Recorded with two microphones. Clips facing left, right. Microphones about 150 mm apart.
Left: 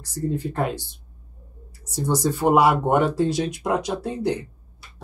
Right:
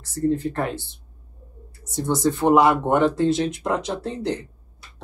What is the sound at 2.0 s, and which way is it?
Speech, 10° left (ahead or behind).